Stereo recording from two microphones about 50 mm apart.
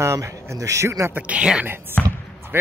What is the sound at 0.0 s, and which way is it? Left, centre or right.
Speech, right.